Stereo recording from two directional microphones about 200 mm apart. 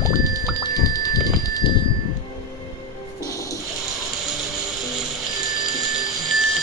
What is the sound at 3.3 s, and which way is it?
Toilet flush, 15° left (ahead or behind).